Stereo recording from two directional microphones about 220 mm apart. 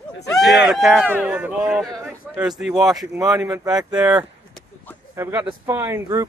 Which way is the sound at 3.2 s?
15° right (ahead or behind).